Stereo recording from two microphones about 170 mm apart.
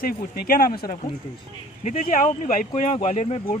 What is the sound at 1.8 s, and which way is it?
Speech, 50° left (ahead or behind).